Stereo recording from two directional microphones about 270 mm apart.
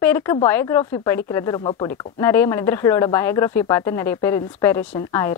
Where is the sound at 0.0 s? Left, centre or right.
Centre.